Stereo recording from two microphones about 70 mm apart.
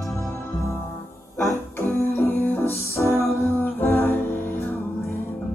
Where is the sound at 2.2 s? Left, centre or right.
Left.